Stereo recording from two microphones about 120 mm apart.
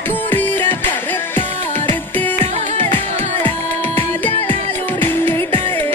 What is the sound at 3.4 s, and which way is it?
Music, 15° left (ahead or behind).